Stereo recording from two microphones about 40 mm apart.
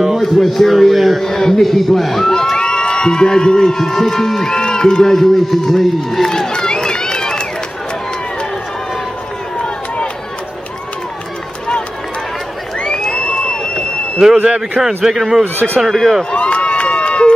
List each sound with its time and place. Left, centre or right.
0.2 s a man's voice: centre
1.2 s a man's voice: centre
2.5 s a man's voice: left
5.1 s run: centre
12.8 s crowd: centre
14.4 s speech: right
15.0 s a man's voice: centre
15.9 s a man's voice: centre
16.3 s run: left